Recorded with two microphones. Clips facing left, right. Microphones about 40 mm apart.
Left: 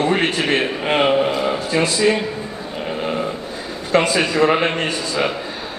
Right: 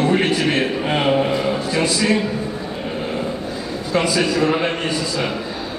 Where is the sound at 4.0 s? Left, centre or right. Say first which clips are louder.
Left 2 dB; left.